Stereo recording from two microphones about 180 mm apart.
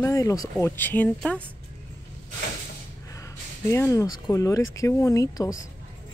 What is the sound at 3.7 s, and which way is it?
Speech, 15° left (ahead or behind).